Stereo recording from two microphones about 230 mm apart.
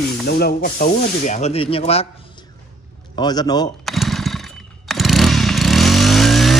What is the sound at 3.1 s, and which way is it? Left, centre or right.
Speech, centre.